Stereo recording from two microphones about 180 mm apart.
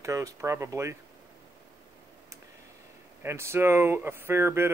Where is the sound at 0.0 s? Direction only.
15° right (ahead or behind).